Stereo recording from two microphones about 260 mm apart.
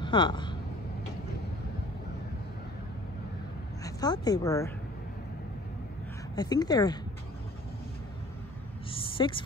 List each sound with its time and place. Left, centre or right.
0.0 s speech: centre
3.8 s a woman's voice: centre
6.3 s speech: centre
8.9 s a sound: centre